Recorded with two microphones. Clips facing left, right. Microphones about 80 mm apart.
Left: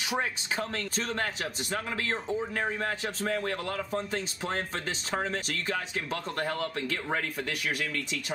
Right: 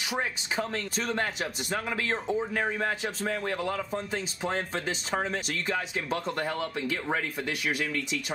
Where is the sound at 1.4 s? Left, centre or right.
Right.